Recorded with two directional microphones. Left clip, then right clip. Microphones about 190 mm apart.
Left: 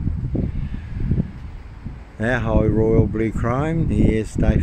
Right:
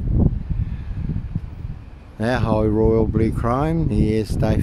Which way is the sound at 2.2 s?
15° right (ahead or behind).